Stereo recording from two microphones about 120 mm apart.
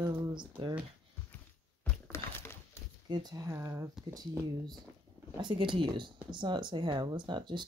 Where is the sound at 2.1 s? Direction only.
20° left (ahead or behind).